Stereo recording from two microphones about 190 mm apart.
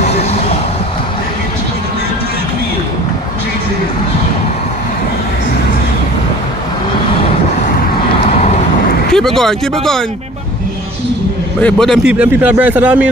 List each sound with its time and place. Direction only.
0.0 s vehicle: 35° left (ahead or behind)
9.1 s speech: centre (ahead or behind)
11.6 s speech: centre (ahead or behind)